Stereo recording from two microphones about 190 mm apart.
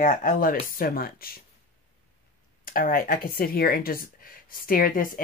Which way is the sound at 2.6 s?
50° left (ahead or behind).